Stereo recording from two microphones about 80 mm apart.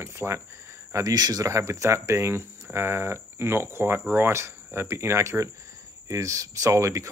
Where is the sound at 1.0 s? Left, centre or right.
Right.